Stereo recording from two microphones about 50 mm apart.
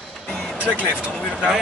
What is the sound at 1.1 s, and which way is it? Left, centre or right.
Speech, left.